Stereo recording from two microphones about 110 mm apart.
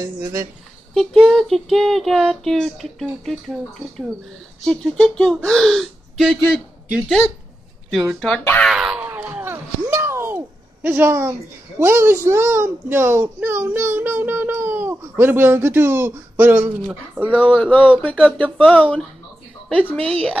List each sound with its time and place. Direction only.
0.0 s speech: 30° right (ahead or behind)
0.9 s child singing: centre (ahead or behind)
4.6 s child singing: 5° left (ahead or behind)
7.9 s child singing: centre (ahead or behind)
8.7 s a sound: 10° right (ahead or behind)
11.8 s speech: 25° right (ahead or behind)
17.6 s speech: 15° left (ahead or behind)
20.1 s child singing: 5° left (ahead or behind)